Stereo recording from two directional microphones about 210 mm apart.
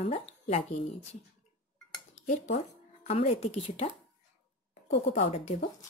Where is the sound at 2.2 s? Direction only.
30° left (ahead or behind).